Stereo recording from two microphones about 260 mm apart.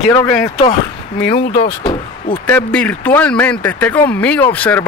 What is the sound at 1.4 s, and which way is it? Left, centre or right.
Speech, left.